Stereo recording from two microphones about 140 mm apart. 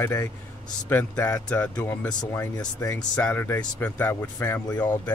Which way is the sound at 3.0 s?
10° left (ahead or behind).